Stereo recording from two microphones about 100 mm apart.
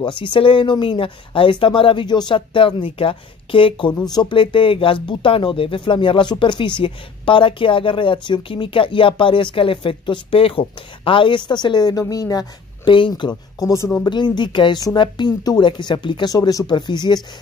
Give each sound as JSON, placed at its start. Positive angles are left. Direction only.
{"t": 0.0, "sound": "speech", "side_deg": 55}
{"t": 12.8, "sound": "speech", "side_deg": 55}
{"t": 14.0, "sound": "speech", "side_deg": 50}
{"t": 16.3, "sound": "speech", "side_deg": 40}